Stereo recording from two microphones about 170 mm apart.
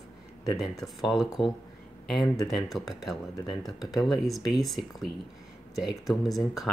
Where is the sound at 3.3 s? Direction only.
25° left (ahead or behind).